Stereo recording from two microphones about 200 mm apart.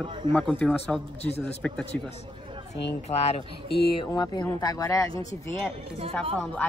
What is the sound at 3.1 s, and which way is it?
Speech, 30° left (ahead or behind).